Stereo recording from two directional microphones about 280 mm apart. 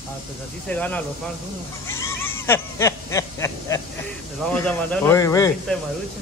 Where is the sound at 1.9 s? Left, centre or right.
Centre.